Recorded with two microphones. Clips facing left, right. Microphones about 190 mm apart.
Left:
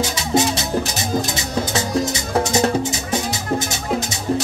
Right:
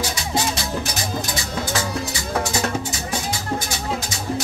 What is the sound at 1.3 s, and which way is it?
Music, 20° left (ahead or behind).